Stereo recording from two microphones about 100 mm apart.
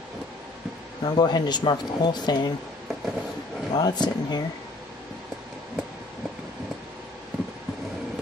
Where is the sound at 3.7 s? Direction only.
45° left (ahead or behind).